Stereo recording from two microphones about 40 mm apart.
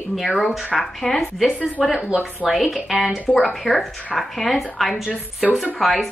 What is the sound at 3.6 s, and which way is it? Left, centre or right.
A woman's voice, centre.